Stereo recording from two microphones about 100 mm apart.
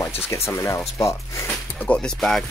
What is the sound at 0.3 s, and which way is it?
Speech, 30° left (ahead or behind).